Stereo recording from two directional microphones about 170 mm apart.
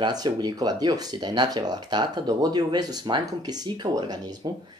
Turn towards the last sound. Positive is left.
turn(degrees=-25)  # may be behind; listen again after turning